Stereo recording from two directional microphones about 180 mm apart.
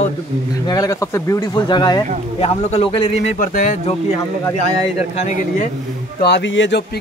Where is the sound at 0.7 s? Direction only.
20° left (ahead or behind); by 3.9 s 40° left (ahead or behind).